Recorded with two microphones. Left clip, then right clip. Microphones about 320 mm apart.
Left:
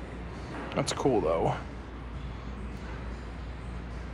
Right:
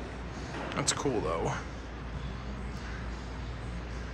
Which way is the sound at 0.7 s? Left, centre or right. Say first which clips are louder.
Left 4 dB; centre.